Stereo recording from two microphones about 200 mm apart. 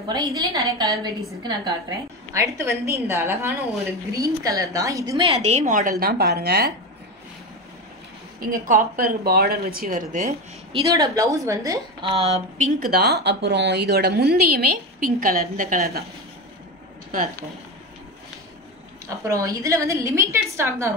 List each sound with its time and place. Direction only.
0.1 s a woman's voice: 20° right (ahead or behind); by 6.7 s 50° right (ahead or behind)
8.4 s a woman's voice: 40° right (ahead or behind)
10.7 s a woman's voice: 15° right (ahead or behind); by 16.0 s 45° right (ahead or behind)
17.1 s a woman's voice: 45° right (ahead or behind)
19.0 s a woman's voice: 15° right (ahead or behind)